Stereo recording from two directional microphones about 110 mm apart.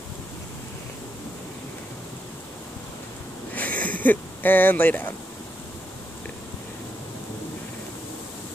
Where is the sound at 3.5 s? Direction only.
15° left (ahead or behind).